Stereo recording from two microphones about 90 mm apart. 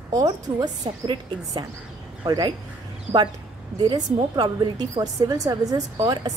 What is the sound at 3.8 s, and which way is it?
A woman's voice, 55° right (ahead or behind).